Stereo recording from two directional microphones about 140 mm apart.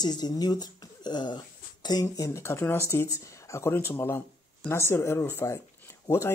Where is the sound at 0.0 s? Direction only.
30° left (ahead or behind).